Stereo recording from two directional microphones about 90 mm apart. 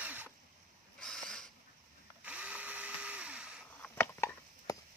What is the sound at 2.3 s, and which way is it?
Ratchet, 15° right (ahead or behind).